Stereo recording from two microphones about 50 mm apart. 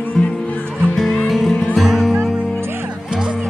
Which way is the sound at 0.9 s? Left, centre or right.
Centre.